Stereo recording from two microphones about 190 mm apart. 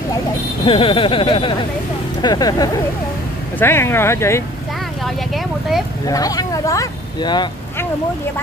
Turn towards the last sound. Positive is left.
turn(degrees=20)  # may be behind; listen again after turning